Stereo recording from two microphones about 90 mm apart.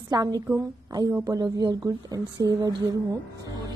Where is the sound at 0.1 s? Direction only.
45° right (ahead or behind).